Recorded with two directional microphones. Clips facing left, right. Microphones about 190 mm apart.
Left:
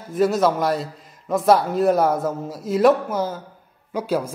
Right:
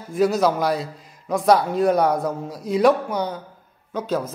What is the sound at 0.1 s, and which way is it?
A man's voice, centre (ahead or behind).